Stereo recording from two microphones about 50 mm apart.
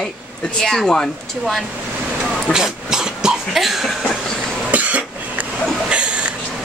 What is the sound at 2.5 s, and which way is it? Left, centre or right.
Cough, centre.